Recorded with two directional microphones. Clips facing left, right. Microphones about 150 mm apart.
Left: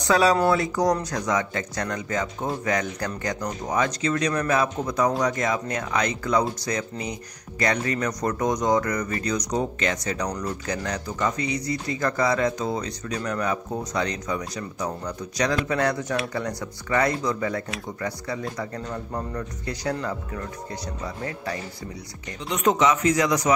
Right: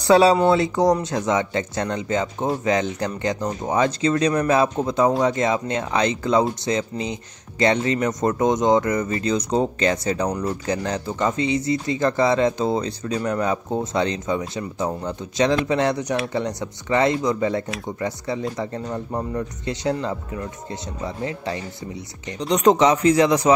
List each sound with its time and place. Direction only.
0.0 s speech: 25° right (ahead or behind)
22.4 s a man's voice: 35° right (ahead or behind)